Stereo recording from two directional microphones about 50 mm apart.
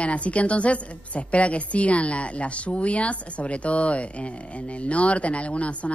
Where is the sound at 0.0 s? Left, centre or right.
Left.